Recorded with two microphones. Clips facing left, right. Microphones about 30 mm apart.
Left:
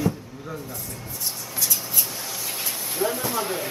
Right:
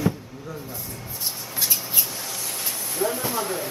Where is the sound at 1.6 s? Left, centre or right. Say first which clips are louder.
Right 1 dB; right.